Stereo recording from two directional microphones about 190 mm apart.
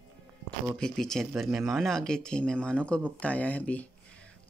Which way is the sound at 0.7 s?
Centre (ahead or behind).